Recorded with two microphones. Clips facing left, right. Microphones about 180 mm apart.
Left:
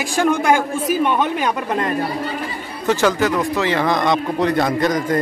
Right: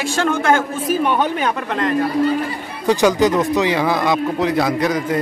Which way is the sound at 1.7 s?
20° left (ahead or behind).